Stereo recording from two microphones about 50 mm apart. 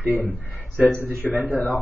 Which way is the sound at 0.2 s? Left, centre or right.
Left.